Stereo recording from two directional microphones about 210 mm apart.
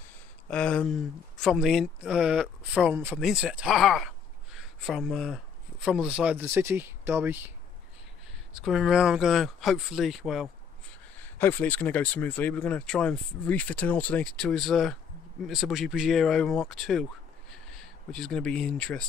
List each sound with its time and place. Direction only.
0.5 s speech: 5° left (ahead or behind)
8.6 s speech: centre (ahead or behind)
11.2 s speech: 10° left (ahead or behind)